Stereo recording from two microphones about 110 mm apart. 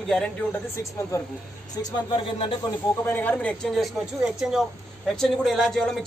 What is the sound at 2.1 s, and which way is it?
Speech, 50° left (ahead or behind).